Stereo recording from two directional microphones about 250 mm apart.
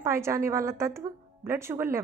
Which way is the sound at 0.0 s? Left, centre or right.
Centre.